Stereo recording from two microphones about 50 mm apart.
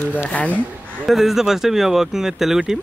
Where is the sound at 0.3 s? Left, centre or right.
Left.